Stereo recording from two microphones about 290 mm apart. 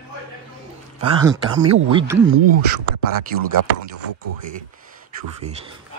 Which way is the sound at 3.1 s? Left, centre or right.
Right.